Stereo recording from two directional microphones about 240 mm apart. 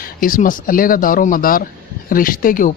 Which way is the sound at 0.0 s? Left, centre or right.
Left.